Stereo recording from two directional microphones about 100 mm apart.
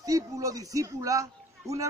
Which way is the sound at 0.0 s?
35° right (ahead or behind).